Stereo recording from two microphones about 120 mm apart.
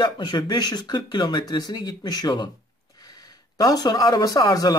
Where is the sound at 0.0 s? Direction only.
35° left (ahead or behind).